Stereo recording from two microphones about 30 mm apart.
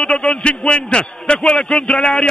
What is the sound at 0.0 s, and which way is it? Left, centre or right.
A man's voice, left.